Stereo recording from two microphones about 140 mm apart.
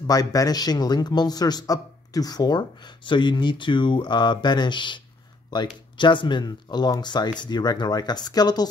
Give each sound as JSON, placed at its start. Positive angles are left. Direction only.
{"t": 0.0, "sound": "a man's voice", "side_deg": 25}